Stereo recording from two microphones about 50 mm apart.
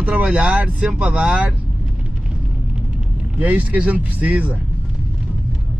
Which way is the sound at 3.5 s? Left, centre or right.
Right.